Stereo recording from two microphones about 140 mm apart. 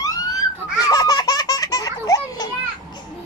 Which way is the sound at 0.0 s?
25° left (ahead or behind).